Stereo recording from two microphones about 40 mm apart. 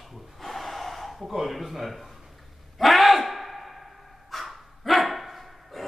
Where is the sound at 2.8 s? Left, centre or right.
Centre.